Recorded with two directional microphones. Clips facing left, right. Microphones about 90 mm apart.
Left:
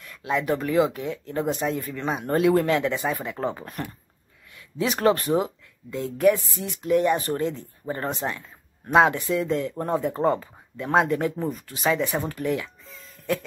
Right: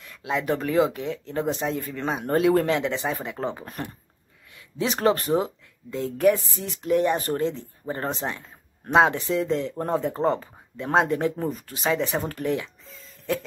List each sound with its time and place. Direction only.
0.3 s speech: 35° right (ahead or behind)
12.4 s music: 30° right (ahead or behind)